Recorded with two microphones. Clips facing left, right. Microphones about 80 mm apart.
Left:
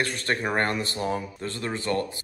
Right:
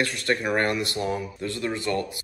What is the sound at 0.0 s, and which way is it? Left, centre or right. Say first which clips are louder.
Speech: right 2 dB; left.